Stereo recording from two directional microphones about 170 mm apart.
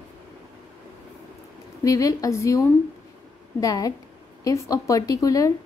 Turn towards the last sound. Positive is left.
turn(degrees=20)  # may be behind; listen again after turning